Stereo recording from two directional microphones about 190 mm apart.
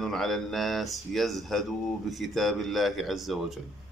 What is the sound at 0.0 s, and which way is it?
Speech, centre (ahead or behind).